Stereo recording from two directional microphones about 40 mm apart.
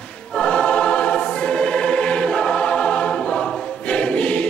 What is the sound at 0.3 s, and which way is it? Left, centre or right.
Choir, left.